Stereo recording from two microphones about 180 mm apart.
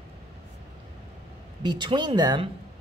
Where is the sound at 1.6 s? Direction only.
25° right (ahead or behind).